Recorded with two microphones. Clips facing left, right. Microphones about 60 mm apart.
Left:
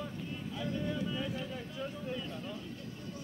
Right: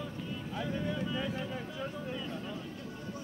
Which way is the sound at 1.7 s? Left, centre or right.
Centre.